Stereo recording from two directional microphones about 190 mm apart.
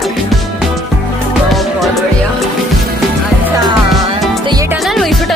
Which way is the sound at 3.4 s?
15° right (ahead or behind).